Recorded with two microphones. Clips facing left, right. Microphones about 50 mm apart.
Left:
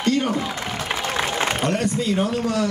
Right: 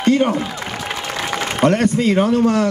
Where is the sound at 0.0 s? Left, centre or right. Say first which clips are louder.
Right 6 dB; right.